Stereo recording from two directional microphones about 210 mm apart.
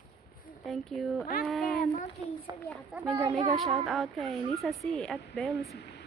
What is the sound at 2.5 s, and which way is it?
Speech, 30° left (ahead or behind).